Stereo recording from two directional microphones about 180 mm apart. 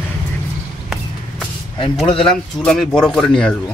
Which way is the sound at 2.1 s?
5° left (ahead or behind).